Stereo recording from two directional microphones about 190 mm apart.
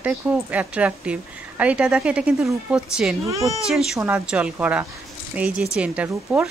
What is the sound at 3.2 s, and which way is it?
Speech, 15° right (ahead or behind).